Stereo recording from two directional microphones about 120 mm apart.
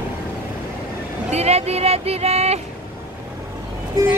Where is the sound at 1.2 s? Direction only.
65° right (ahead or behind).